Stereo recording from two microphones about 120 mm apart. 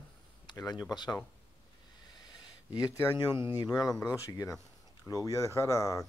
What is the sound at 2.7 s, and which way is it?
Speech, 25° left (ahead or behind).